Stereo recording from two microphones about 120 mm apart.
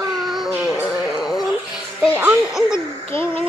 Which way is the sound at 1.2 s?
5° right (ahead or behind).